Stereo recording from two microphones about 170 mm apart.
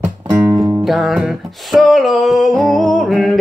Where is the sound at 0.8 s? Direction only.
Centre (ahead or behind).